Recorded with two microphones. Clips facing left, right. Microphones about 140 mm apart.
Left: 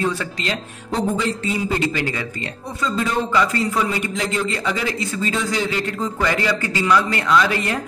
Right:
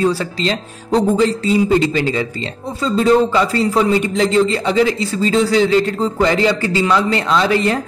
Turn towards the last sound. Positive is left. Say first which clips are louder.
# right 3 dB
turn(degrees=-30)  # may be behind; listen again after turning